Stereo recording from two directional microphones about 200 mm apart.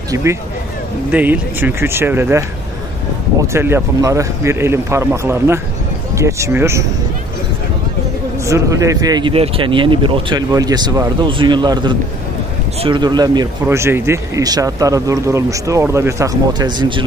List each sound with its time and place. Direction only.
0.1 s speech: 15° right (ahead or behind)
3.5 s speech: 10° right (ahead or behind)
8.5 s speech: 15° right (ahead or behind)